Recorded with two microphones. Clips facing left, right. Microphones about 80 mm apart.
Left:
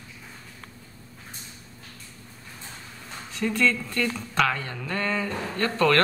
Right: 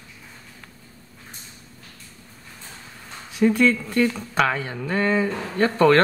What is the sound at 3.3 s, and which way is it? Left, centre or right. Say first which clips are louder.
Speech: right 6 dB; centre.